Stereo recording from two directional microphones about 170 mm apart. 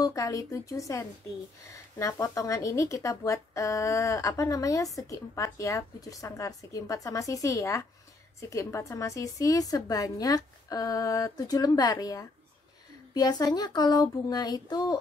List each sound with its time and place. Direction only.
0.0 s speech: 20° left (ahead or behind)